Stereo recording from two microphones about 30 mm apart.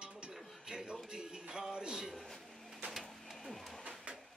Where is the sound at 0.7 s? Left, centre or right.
Right.